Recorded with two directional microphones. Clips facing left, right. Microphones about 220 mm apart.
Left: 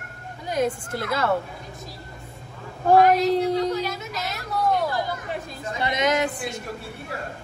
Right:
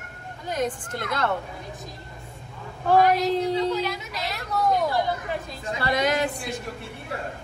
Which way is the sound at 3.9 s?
45° left (ahead or behind).